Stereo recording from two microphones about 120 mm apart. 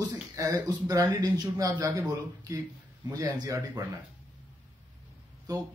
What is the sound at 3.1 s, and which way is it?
Speech, 30° right (ahead or behind).